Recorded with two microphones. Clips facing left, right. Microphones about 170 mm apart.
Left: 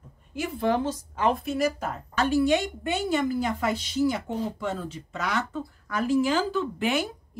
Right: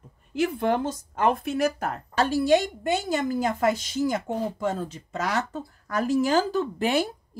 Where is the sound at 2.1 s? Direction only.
35° right (ahead or behind).